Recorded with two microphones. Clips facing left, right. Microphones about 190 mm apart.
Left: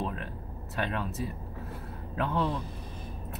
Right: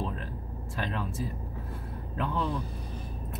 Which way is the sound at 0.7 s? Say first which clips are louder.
Left 1 dB; 65° left (ahead or behind).